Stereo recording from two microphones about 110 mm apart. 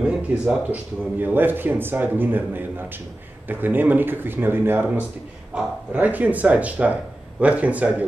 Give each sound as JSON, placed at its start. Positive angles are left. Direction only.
{"t": 0.0, "sound": "speech", "side_deg": -10}